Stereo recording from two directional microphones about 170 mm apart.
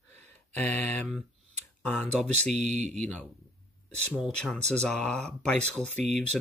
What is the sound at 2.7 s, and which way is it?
Speech, 45° right (ahead or behind).